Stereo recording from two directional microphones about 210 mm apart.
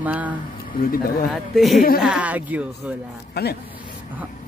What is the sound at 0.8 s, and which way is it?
Speech, 45° left (ahead or behind).